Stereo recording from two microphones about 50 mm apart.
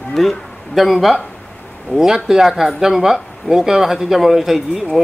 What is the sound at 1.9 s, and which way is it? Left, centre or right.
Speech, centre.